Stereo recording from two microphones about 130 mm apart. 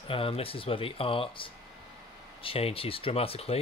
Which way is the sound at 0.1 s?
45° left (ahead or behind).